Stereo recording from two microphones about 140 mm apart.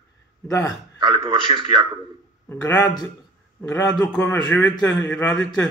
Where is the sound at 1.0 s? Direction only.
35° right (ahead or behind).